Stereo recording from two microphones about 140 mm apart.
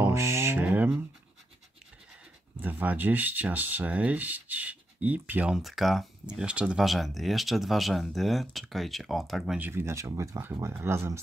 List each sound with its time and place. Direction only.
0.0 s mantra: 20° right (ahead or behind)
2.6 s speech: 10° right (ahead or behind)
9.6 s speech: 15° right (ahead or behind)